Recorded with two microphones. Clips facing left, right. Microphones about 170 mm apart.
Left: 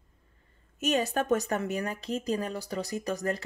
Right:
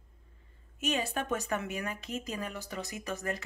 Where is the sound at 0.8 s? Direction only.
45° left (ahead or behind).